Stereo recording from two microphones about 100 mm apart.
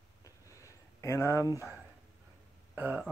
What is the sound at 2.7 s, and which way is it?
Speech, 20° right (ahead or behind).